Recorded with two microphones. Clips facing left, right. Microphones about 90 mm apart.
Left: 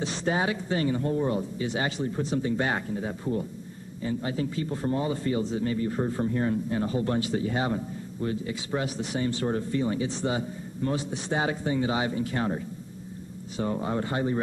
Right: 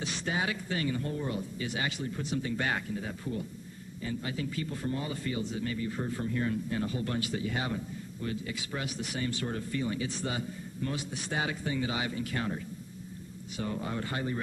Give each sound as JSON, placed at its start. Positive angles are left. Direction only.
{"t": 0.0, "sound": "speech", "side_deg": 35}